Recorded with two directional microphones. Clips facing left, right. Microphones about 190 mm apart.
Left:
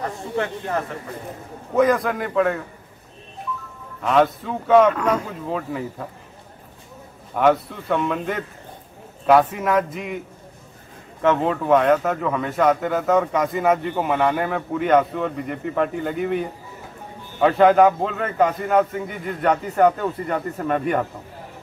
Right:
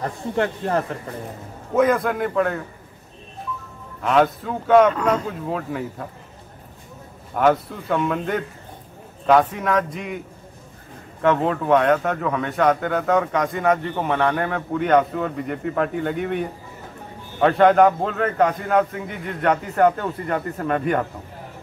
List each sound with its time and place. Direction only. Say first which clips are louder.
0.4 s speech: right 3 dB; 35° right (ahead or behind)
1.8 s a man's voice: even; centre (ahead or behind)
4.0 s a man's voice: even; centre (ahead or behind)
7.3 s a man's voice: even; centre (ahead or behind)
11.2 s a man's voice: even; centre (ahead or behind)